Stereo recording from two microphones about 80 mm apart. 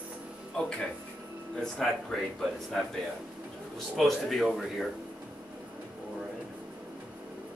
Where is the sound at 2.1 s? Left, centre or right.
Centre.